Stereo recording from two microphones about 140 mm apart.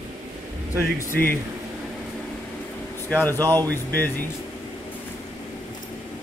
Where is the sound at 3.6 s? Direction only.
15° left (ahead or behind).